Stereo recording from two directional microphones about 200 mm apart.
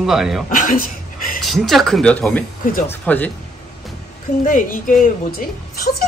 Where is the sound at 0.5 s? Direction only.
40° left (ahead or behind).